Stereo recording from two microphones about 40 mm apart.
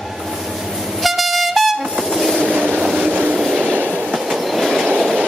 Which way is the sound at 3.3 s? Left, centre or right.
Centre.